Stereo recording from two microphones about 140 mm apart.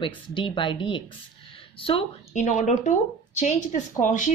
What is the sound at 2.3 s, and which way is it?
A woman's voice, 60° left (ahead or behind).